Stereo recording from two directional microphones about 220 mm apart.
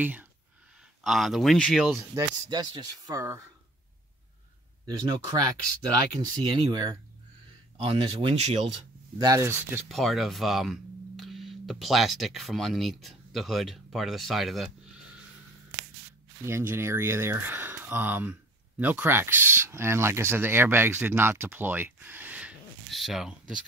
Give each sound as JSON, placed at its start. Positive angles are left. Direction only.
{"t": 0.0, "sound": "speech", "side_deg": -10}
{"t": 2.1, "sound": "speech", "side_deg": -20}
{"t": 4.8, "sound": "speech", "side_deg": -15}
{"t": 9.2, "sound": "speech", "side_deg": -15}
{"t": 9.8, "sound": "speech", "side_deg": 0}
{"t": 16.4, "sound": "speech", "side_deg": -10}